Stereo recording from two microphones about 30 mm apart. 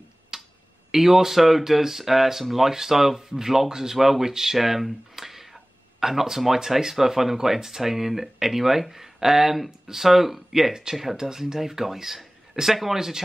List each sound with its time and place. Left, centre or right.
0.3 s finger snapping: centre
0.9 s speech: centre
4.6 s a sound: centre
6.4 s speech: centre
10.7 s speech: right
12.6 s speech: centre